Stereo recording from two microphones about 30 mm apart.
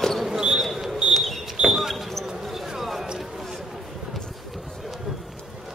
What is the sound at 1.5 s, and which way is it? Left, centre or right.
Basketball bounce, centre.